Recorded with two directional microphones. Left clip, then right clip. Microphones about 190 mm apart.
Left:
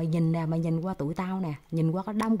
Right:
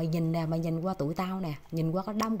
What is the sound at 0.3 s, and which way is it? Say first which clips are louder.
Speech: left 1 dB; 15° left (ahead or behind).